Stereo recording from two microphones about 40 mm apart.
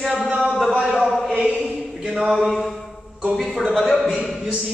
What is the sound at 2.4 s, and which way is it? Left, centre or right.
Mantra, centre.